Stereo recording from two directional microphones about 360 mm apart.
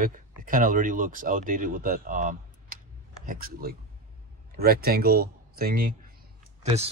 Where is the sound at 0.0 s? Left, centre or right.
Right.